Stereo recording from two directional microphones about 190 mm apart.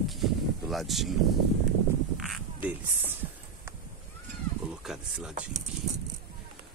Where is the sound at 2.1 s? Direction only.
Centre (ahead or behind).